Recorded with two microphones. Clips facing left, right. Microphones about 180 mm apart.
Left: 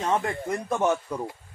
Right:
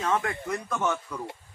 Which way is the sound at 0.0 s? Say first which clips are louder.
Left 2 dB; 30° left (ahead or behind).